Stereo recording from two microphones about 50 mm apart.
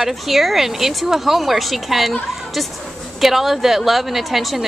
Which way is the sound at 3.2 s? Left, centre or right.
Centre.